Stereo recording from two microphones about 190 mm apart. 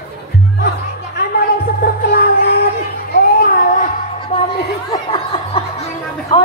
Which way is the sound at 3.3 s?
45° left (ahead or behind).